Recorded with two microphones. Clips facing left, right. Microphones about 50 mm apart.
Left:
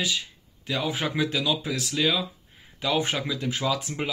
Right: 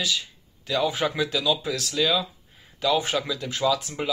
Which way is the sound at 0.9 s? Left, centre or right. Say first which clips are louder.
Right 3 dB; centre.